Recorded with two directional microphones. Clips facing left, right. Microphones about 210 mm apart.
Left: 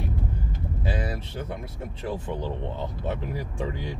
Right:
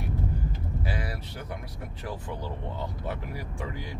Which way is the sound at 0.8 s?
20° left (ahead or behind).